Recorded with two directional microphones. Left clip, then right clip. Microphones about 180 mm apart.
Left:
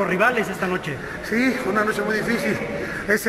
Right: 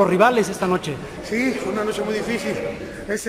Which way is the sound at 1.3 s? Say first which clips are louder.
Left 1 dB; 5° right (ahead or behind).